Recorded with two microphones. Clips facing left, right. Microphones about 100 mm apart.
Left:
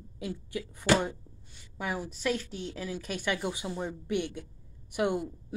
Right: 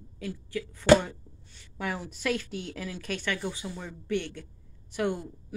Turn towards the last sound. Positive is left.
turn(degrees=15)  # may be behind; listen again after turning